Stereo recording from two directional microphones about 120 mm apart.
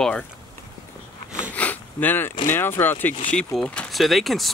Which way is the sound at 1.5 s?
15° left (ahead or behind).